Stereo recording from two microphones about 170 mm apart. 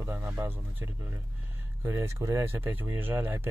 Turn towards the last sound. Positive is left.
turn(degrees=-10)  # may be behind; listen again after turning